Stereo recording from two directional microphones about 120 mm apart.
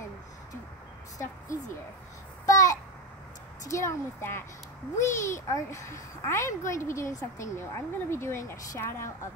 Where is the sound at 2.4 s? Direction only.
30° left (ahead or behind).